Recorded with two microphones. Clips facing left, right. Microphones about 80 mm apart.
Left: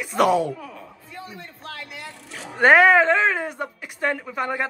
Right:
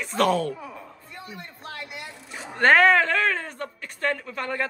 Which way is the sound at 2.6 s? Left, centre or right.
Centre.